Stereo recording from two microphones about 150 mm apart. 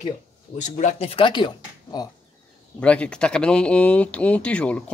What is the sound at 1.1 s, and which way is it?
Speech, 35° left (ahead or behind).